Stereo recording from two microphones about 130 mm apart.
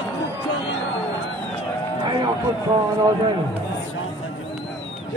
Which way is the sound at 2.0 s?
30° right (ahead or behind).